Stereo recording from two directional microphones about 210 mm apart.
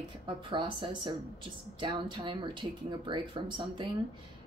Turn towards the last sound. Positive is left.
turn(degrees=-20)  # may be behind; listen again after turning